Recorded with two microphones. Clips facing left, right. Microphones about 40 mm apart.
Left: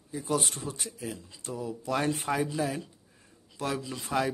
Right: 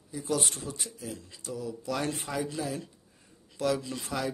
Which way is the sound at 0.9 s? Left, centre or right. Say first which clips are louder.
Left 2 dB; left.